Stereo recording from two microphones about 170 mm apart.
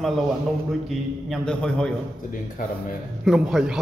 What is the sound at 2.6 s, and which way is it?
Speech, 55° left (ahead or behind).